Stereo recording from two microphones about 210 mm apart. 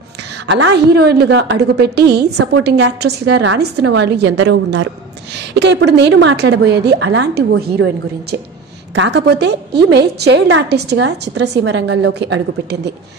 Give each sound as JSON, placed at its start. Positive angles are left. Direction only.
{"t": 0.5, "sound": "a woman's voice", "side_deg": -60}